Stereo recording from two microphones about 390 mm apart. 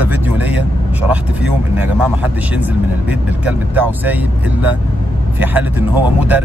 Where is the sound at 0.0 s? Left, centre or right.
Centre.